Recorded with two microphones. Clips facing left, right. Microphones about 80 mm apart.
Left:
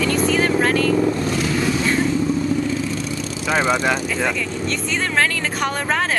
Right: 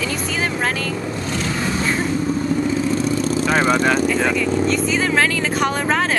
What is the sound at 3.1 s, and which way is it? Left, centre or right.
Vehicle, right.